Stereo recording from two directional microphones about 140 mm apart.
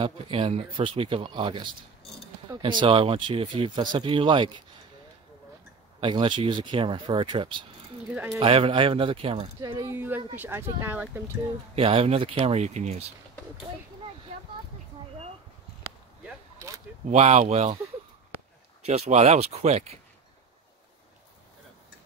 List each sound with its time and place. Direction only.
0.0 s speech: 40° right (ahead or behind)
5.9 s speech: 35° right (ahead or behind)
9.6 s speech: 25° right (ahead or behind)
11.7 s speech: 45° right (ahead or behind)
16.5 s single-lens reflex camera: 25° right (ahead or behind)
17.1 s speech: 55° right (ahead or behind)
18.9 s speech: 50° right (ahead or behind)